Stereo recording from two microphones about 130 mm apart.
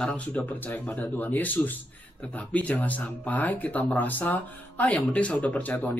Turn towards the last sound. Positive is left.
turn(degrees=10)  # may be behind; listen again after turning